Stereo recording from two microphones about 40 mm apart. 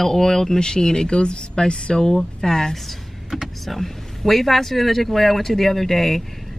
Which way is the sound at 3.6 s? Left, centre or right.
Centre.